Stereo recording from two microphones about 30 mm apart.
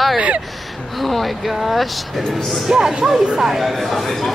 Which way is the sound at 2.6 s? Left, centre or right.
Centre.